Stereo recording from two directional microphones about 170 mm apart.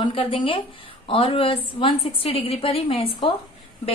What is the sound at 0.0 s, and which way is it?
A woman's voice, 35° left (ahead or behind).